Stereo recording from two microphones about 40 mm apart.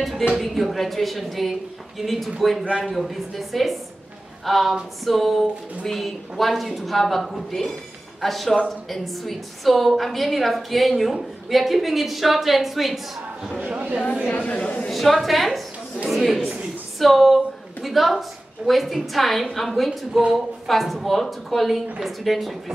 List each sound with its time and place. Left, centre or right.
0.4 s a woman's voice: centre
13.7 s speech: right
14.3 s a woman's voice: left
14.9 s a woman's voice: centre